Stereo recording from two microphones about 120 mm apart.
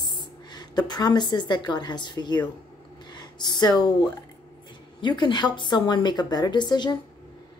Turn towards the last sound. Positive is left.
turn(degrees=40)  # may be behind; listen again after turning